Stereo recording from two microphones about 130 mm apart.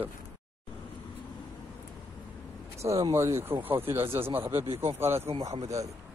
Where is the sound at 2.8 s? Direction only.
25° right (ahead or behind).